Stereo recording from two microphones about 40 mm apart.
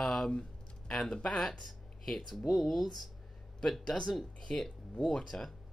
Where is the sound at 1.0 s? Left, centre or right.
Centre.